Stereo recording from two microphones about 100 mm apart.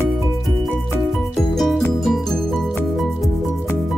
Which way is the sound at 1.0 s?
Centre (ahead or behind).